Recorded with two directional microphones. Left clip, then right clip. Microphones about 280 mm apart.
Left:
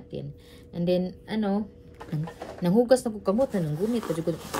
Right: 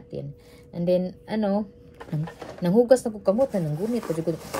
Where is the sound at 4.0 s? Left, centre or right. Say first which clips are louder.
Right 2 dB; left.